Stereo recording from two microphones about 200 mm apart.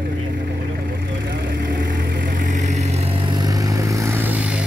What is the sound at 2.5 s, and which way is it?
Vehicle, 35° right (ahead or behind).